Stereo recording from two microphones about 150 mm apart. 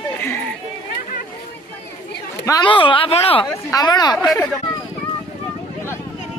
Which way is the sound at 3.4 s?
25° left (ahead or behind).